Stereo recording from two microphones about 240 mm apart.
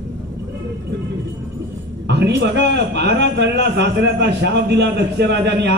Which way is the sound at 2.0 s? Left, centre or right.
Right.